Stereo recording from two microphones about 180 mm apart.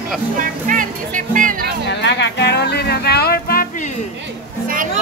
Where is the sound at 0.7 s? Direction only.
45° right (ahead or behind).